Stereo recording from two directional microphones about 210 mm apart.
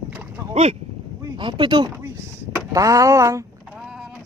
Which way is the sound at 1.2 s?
20° right (ahead or behind).